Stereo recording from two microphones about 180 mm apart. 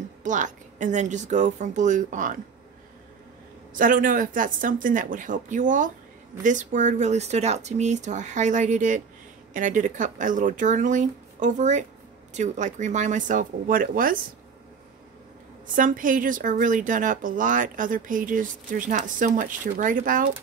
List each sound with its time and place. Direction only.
0.2 s speech: 45° right (ahead or behind)
3.7 s speech: 50° right (ahead or behind)
15.7 s speech: 50° right (ahead or behind)